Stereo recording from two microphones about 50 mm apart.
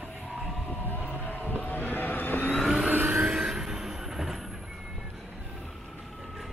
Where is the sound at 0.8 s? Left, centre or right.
Left.